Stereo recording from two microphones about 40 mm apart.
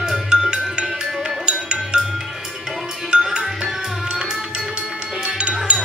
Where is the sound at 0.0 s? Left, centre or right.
Centre.